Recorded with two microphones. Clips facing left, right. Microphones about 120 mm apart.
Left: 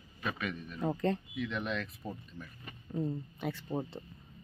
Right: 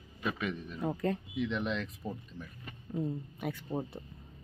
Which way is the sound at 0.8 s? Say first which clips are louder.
Left 1 dB; 5° right (ahead or behind).